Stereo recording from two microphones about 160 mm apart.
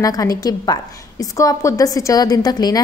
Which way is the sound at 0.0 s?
20° left (ahead or behind).